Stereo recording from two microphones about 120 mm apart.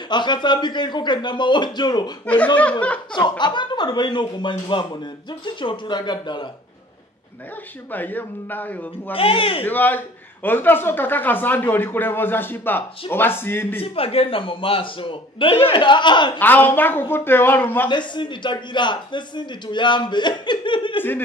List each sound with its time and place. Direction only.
0.1 s a man's voice: 40° left (ahead or behind)
2.2 s a man's voice: 10° left (ahead or behind)
3.1 s a man's voice: 40° left (ahead or behind)
7.9 s a man's voice: 15° left (ahead or behind)
9.1 s a man's voice: 50° left (ahead or behind)
9.7 s a man's voice: 15° left (ahead or behind)
13.7 s a man's voice: 55° left (ahead or behind)
16.3 s a man's voice: 15° left (ahead or behind)
17.8 s a man's voice: 40° left (ahead or behind)